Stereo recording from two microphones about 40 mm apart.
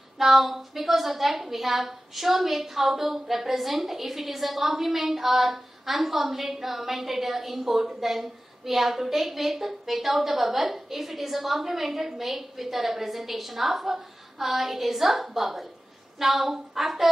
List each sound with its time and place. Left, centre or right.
0.2 s a woman's voice: centre